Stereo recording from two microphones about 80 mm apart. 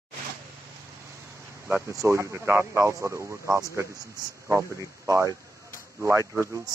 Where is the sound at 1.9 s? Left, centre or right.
Right.